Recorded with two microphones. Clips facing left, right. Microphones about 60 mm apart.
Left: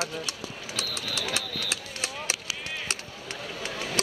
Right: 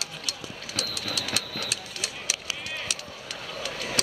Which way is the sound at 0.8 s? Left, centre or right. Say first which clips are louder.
Right 1 dB; left.